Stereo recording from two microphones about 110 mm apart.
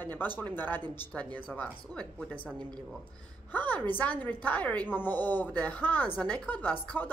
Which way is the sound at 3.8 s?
15° left (ahead or behind).